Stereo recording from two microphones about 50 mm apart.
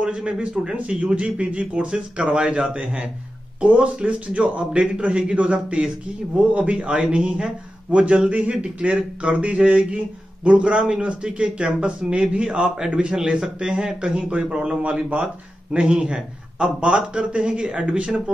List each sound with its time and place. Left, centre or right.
0.0 s speech: centre